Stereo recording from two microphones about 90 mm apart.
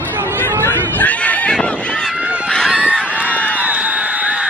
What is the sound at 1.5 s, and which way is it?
Fowl, 10° left (ahead or behind).